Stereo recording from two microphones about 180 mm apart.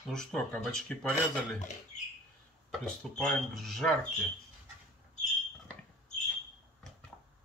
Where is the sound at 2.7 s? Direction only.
Centre (ahead or behind).